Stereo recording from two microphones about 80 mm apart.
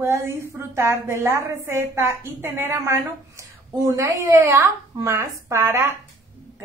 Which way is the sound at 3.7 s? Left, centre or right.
Right.